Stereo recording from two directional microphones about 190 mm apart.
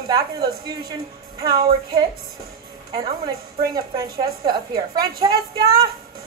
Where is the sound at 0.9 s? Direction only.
20° right (ahead or behind).